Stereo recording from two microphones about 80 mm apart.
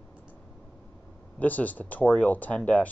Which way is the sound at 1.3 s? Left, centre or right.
Left.